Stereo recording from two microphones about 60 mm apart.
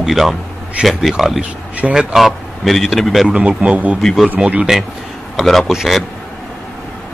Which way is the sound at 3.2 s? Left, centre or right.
Centre.